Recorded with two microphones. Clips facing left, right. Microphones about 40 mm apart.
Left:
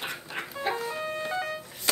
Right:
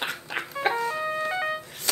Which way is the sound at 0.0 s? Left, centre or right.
Right.